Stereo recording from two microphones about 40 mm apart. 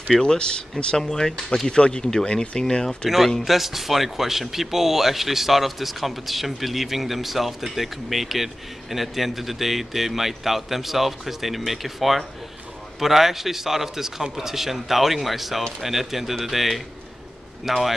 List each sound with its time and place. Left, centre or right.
0.2 s speech: left
3.4 s a man's voice: centre